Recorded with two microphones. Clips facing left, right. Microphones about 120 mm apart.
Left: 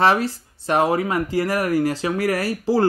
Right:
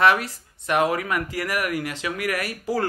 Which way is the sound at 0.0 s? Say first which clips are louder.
Left 2 dB; 30° left (ahead or behind).